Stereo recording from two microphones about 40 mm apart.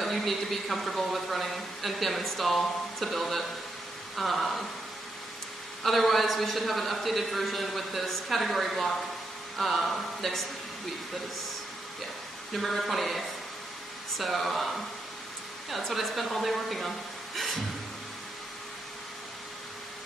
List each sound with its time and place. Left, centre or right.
0.0 s speech: centre
5.9 s speech: centre
12.5 s speech: centre
17.4 s a sound: centre